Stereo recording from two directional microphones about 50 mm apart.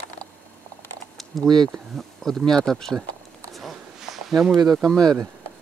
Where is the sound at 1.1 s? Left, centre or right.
Centre.